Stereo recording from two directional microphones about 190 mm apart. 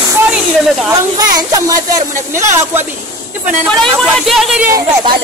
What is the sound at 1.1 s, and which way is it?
Speech, 20° right (ahead or behind).